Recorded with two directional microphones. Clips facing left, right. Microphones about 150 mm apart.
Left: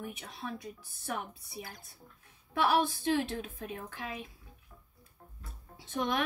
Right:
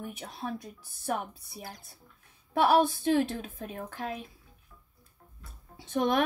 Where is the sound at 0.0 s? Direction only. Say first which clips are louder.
Right 3 dB; 40° right (ahead or behind).